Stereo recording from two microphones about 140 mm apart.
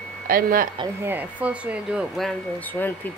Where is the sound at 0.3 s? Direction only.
90° right.